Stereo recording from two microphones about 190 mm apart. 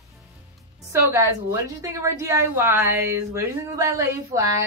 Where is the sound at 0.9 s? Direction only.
15° right (ahead or behind).